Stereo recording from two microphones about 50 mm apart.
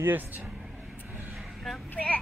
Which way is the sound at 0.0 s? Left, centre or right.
Right.